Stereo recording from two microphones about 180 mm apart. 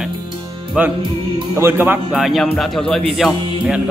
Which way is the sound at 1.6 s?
10° right (ahead or behind).